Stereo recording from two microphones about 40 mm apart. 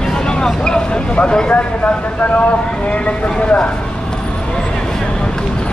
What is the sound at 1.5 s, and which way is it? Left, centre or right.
Speech, left.